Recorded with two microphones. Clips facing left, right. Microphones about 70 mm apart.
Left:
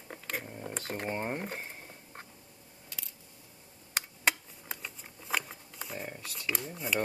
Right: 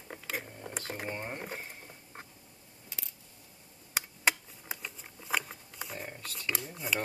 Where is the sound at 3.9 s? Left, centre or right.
Centre.